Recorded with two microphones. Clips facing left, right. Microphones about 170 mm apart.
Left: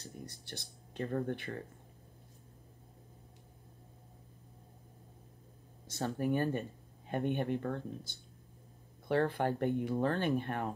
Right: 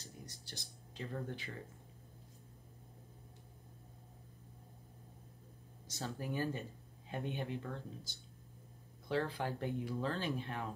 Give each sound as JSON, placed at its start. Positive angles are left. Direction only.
{"t": 0.0, "sound": "speech", "side_deg": 60}
{"t": 5.9, "sound": "speech", "side_deg": 60}